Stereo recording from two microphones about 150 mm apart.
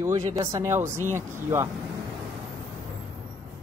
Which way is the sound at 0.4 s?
20° right (ahead or behind).